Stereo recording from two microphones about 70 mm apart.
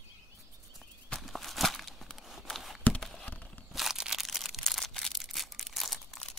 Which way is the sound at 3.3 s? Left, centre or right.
Left.